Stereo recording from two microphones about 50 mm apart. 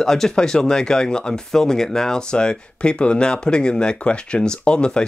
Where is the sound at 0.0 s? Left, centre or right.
Centre.